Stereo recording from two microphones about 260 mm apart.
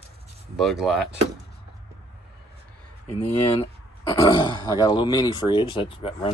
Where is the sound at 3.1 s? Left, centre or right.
Left.